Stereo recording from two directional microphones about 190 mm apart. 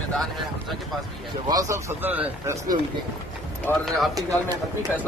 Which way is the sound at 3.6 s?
5° left (ahead or behind).